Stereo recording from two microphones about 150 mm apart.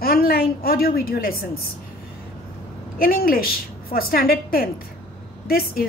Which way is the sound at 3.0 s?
80° left.